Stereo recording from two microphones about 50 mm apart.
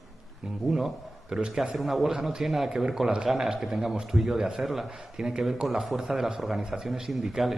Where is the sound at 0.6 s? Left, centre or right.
Centre.